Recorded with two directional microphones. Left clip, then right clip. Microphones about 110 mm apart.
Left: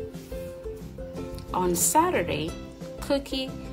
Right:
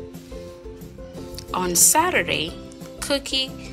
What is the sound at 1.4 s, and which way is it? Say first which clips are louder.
A woman's voice: right 5 dB; 15° left (ahead or behind).